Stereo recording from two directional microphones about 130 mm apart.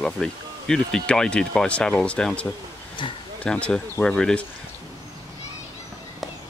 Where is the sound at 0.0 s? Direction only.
5° left (ahead or behind).